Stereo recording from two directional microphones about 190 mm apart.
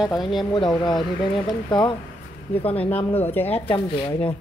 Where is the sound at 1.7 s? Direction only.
25° left (ahead or behind).